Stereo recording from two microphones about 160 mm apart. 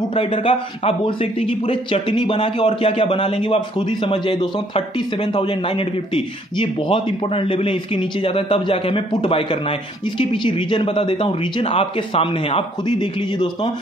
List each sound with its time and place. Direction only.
0.1 s a man's voice: 30° left (ahead or behind)